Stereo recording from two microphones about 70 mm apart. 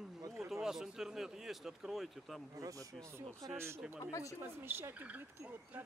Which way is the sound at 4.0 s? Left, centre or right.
Left.